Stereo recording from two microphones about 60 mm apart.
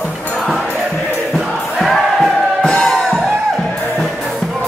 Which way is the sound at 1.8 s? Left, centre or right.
Centre.